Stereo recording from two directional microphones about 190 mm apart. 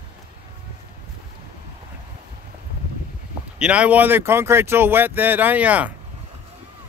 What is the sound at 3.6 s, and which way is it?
Speech, 5° right (ahead or behind).